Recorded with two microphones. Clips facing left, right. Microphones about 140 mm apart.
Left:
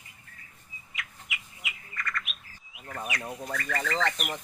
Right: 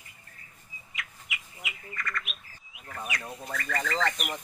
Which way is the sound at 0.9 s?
Centre (ahead or behind).